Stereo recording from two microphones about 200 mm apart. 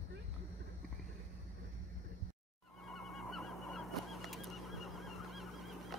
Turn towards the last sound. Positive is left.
turn(degrees=0)  # may be behind; listen again after turning